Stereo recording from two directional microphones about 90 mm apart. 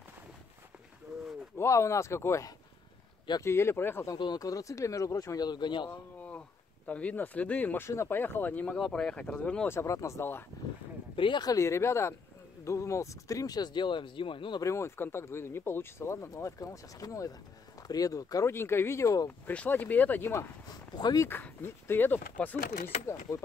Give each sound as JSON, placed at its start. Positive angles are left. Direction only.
{"t": 1.6, "sound": "speech", "side_deg": 35}
{"t": 4.1, "sound": "speech", "side_deg": 45}
{"t": 5.9, "sound": "a sound", "side_deg": 15}
{"t": 6.9, "sound": "speech", "side_deg": 15}
{"t": 8.7, "sound": "speech", "side_deg": 5}
{"t": 9.7, "sound": "speech", "side_deg": 30}
{"t": 11.1, "sound": "speech", "side_deg": 70}
{"t": 11.4, "sound": "speech", "side_deg": 35}
{"t": 14.6, "sound": "speech", "side_deg": 30}
{"t": 18.5, "sound": "speech", "side_deg": 25}
{"t": 19.4, "sound": "speech", "side_deg": 20}
{"t": 20.9, "sound": "speech", "side_deg": 50}
{"t": 21.3, "sound": "speech", "side_deg": 20}
{"t": 23.3, "sound": "speech", "side_deg": 35}